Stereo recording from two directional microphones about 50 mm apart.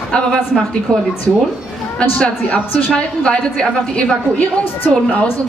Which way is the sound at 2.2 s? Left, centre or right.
Left.